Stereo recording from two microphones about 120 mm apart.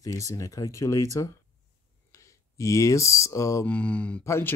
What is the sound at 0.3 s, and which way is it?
Speech, 30° left (ahead or behind).